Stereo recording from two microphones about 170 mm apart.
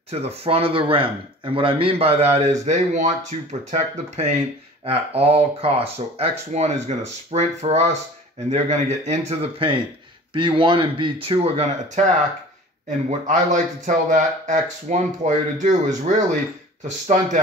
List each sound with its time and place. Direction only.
0.1 s speech: 35° right (ahead or behind)
13.3 s speech: 50° right (ahead or behind)